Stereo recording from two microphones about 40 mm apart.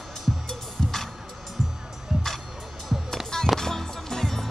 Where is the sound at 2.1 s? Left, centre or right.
Centre.